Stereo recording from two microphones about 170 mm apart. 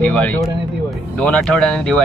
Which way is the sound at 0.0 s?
5° left (ahead or behind).